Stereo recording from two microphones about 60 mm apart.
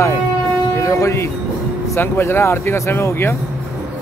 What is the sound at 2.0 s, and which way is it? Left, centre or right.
Speech, left.